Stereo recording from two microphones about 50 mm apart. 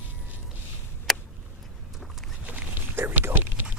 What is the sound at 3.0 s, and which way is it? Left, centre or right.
Whispering, right.